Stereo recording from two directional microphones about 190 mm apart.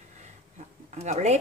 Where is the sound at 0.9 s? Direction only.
35° right (ahead or behind).